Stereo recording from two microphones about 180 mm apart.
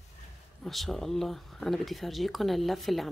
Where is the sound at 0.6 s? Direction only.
Centre (ahead or behind).